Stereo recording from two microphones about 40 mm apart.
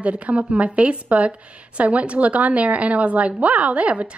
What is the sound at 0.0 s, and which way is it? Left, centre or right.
A woman's voice, right.